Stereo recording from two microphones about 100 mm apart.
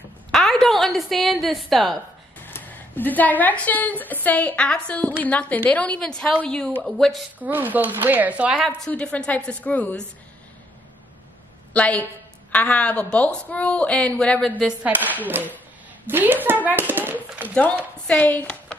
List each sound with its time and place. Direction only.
0.3 s a woman's voice: 5° left (ahead or behind)
2.4 s a woman's voice: 20° left (ahead or behind)
7.0 s a woman's voice: centre (ahead or behind)
7.3 s speech: 20° right (ahead or behind)
8.6 s a woman's voice: 10° left (ahead or behind)
11.7 s a woman's voice: 15° left (ahead or behind)
14.8 s a woman's voice: 15° right (ahead or behind)
18.0 s speech: 15° left (ahead or behind)